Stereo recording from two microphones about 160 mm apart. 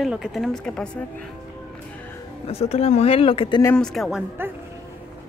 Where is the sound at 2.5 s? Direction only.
40° left (ahead or behind).